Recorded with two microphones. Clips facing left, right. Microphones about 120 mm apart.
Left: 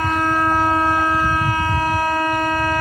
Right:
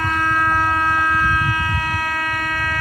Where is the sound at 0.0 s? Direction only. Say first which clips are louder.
Left 1 dB; 25° left (ahead or behind).